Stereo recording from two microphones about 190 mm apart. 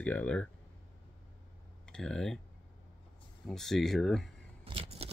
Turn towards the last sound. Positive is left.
turn(degrees=-30)  # may be behind; listen again after turning